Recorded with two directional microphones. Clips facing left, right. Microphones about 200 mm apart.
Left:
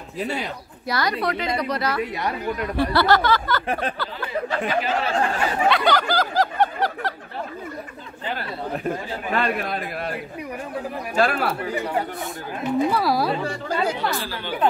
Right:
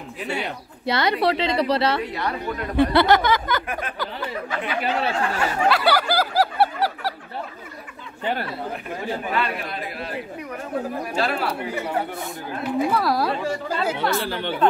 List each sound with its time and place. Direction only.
0.8 s speech: 25° right (ahead or behind)
2.8 s a sound: 20° right (ahead or behind)
4.5 s speech: 35° left (ahead or behind)
5.7 s snicker: 5° right (ahead or behind)
8.8 s a man's voice: 45° left (ahead or behind)
11.1 s a man's voice: 50° left (ahead or behind)
12.7 s a woman's voice: centre (ahead or behind)